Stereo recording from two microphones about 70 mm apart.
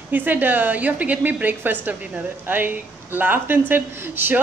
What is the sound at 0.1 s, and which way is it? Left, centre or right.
Speech, right.